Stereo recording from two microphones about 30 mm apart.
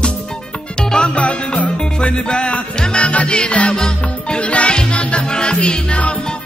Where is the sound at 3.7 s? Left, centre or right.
Left.